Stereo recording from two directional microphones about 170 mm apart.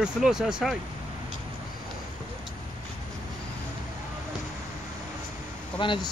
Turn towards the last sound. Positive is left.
turn(degrees=30)  # may be behind; listen again after turning